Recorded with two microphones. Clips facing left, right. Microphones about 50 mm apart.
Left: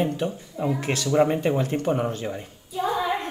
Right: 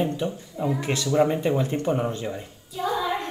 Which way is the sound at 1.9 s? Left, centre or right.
Centre.